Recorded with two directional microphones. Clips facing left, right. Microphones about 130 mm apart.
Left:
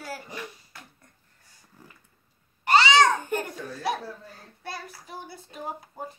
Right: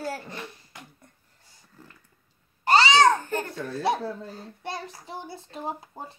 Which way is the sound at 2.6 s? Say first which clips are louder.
Even; 35° right (ahead or behind).